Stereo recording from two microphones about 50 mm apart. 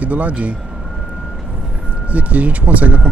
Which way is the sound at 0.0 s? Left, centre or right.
Right.